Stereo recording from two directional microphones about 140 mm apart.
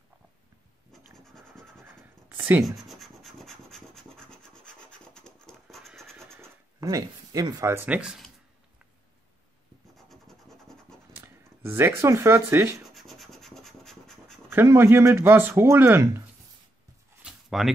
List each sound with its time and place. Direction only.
1.1 s scratch: 5° left (ahead or behind)
1.8 s writing: 15° right (ahead or behind)
2.9 s rub: centre (ahead or behind)
6.8 s speech: 25° right (ahead or behind); by 8.3 s 5° right (ahead or behind)
9.9 s scratch: centre (ahead or behind)
11.6 s speech: 15° right (ahead or behind)
12.9 s rub: centre (ahead or behind)
14.5 s speech: 15° right (ahead or behind)
17.2 s a sound: centre (ahead or behind)